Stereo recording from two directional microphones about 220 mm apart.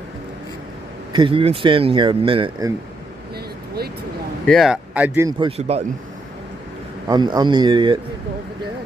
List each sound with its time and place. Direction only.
1.1 s speech: 25° right (ahead or behind)
4.5 s speech: centre (ahead or behind)
5.4 s speech: 30° right (ahead or behind)
7.1 s speech: 20° right (ahead or behind)